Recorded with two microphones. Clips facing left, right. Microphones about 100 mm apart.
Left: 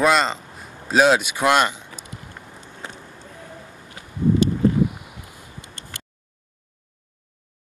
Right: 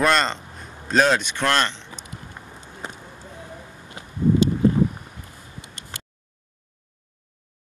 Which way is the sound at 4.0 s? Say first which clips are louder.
Right 3 dB; 20° right (ahead or behind).